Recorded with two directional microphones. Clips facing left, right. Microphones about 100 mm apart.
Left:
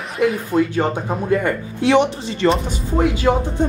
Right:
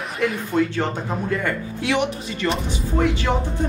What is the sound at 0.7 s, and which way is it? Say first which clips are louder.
Speech: left 4 dB; 20° left (ahead or behind).